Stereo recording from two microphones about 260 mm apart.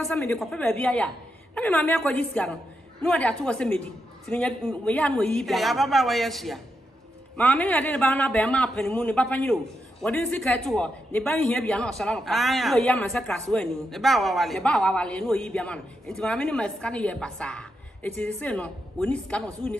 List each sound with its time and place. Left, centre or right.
0.0 s a man's voice: centre